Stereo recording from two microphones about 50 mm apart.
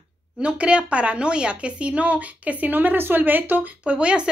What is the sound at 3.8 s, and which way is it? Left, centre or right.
Speech, right.